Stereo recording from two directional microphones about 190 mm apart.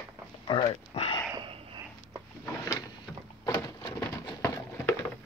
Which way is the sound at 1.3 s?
25° right (ahead or behind).